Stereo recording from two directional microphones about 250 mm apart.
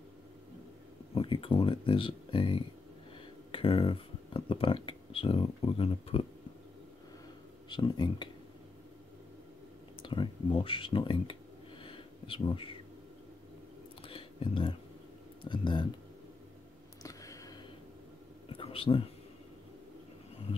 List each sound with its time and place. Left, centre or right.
1.1 s speech: left
7.7 s speech: centre
10.0 s speech: centre
11.8 s a sound: left
14.0 s whispering: left
15.4 s speech: centre
17.0 s a sound: centre